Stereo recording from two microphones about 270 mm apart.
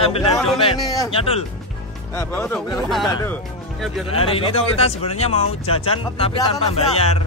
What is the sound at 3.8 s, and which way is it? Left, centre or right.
Speech, centre.